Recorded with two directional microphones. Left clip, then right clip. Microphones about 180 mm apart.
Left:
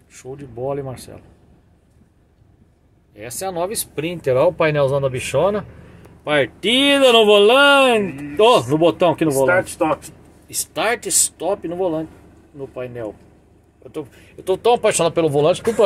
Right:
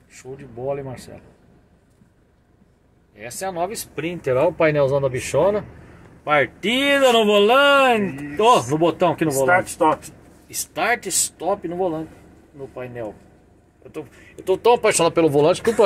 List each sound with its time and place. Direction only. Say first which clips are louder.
0.1 s speech: left 3 dB; 25° left (ahead or behind)
3.2 s speech: left 2 dB; 30° left (ahead or behind)
14.4 s speech: even; 10° left (ahead or behind)